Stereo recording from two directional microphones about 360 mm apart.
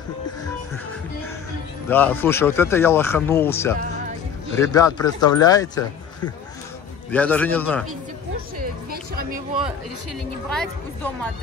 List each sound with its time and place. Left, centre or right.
1.9 s speech: centre
7.1 s a man's voice: centre
8.5 s music: right
10.5 s a man's voice: centre